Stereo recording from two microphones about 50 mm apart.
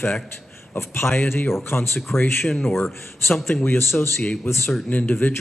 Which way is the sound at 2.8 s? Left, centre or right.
Left.